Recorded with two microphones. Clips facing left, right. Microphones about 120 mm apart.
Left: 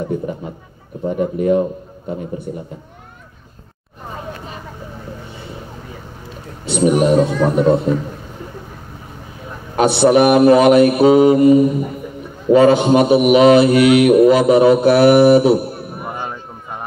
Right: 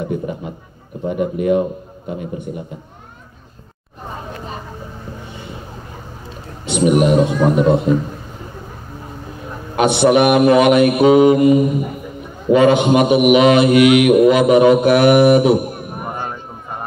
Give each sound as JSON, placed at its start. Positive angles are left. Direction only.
{"t": 1.0, "sound": "a man's voice", "side_deg": -10}
{"t": 2.1, "sound": "mantra", "side_deg": 35}
{"t": 6.8, "sound": "a man's voice", "side_deg": -10}
{"t": 9.8, "sound": "mantra", "side_deg": 35}
{"t": 11.4, "sound": "a man's voice", "side_deg": -10}
{"t": 12.5, "sound": "mantra", "side_deg": 35}
{"t": 15.7, "sound": "a sound", "side_deg": -15}
{"t": 16.1, "sound": "a sound", "side_deg": 5}